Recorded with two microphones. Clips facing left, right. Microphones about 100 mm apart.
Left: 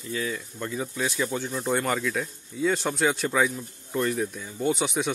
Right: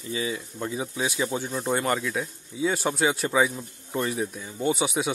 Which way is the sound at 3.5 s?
15° right (ahead or behind).